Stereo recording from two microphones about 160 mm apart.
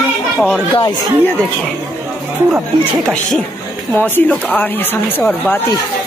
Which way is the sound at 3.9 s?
10° left (ahead or behind).